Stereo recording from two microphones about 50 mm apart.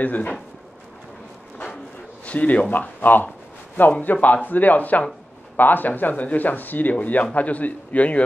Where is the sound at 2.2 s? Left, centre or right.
Left.